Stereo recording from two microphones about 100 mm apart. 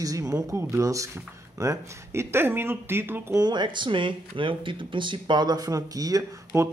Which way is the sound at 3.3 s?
45° right (ahead or behind).